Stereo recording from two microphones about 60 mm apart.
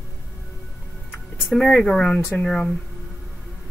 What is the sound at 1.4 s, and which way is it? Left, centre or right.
Speech, centre.